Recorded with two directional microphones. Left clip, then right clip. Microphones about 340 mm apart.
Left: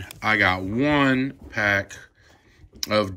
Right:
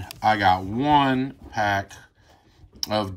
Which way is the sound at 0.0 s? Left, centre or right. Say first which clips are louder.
Right 1 dB; centre.